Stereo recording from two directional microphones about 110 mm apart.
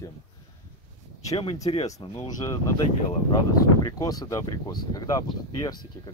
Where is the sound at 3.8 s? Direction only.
35° left (ahead or behind).